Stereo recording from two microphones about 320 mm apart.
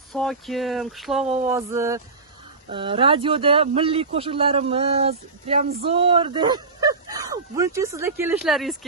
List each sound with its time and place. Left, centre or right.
0.1 s speech: centre